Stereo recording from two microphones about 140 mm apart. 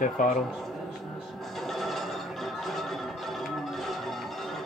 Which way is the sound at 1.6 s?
Centre (ahead or behind).